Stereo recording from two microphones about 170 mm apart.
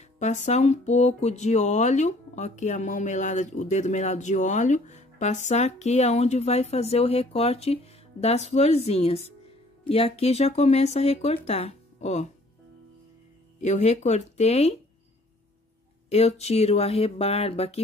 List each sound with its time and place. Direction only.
0.2 s speech: 45° left (ahead or behind)
13.6 s speech: 40° left (ahead or behind)
16.1 s speech: 40° left (ahead or behind)